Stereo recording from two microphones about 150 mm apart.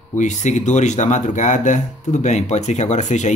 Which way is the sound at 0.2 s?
55° left (ahead or behind).